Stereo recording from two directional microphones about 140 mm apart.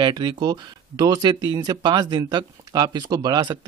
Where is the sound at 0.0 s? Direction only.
35° right (ahead or behind).